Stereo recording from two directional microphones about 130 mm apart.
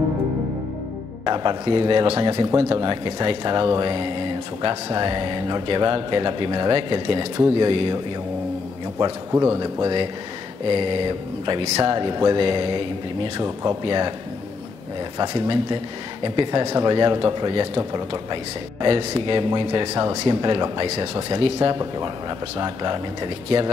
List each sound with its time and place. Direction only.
1.2 s speech: 30° right (ahead or behind)
9.0 s speech: 25° right (ahead or behind)
15.1 s speech: 35° right (ahead or behind)